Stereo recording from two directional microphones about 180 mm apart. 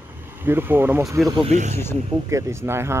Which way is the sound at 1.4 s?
40° right (ahead or behind).